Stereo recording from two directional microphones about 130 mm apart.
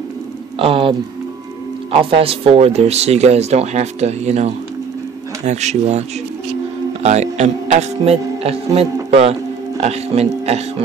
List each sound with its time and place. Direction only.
0.6 s speech: 45° right (ahead or behind)